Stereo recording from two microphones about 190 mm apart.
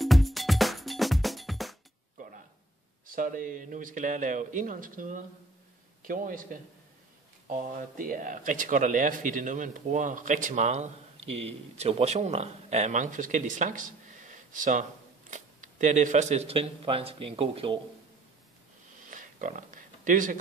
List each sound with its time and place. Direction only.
0.0 s music: centre (ahead or behind)
3.1 s speech: 45° right (ahead or behind); by 17.7 s 30° right (ahead or behind)
19.0 s a sound: 45° right (ahead or behind)